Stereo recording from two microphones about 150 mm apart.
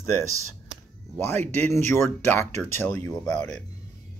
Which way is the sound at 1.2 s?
15° left (ahead or behind).